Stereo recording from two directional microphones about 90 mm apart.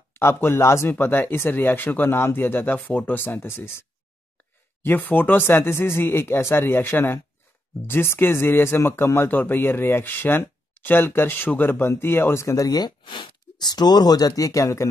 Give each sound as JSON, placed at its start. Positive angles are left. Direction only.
{"t": 0.1, "sound": "speech", "side_deg": 30}
{"t": 4.8, "sound": "speech", "side_deg": 20}
{"t": 13.0, "sound": "speech", "side_deg": 65}